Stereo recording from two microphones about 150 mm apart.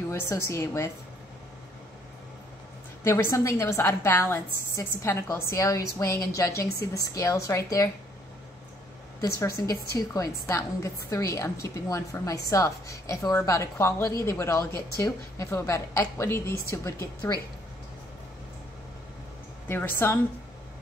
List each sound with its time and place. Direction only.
0.1 s a woman's voice: 20° left (ahead or behind)
3.0 s a woman's voice: 20° left (ahead or behind)
9.7 s a woman's voice: 25° left (ahead or behind)
19.7 s a woman's voice: 15° left (ahead or behind)